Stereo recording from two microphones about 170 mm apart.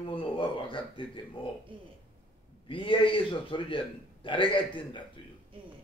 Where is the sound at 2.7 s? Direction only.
30° left (ahead or behind).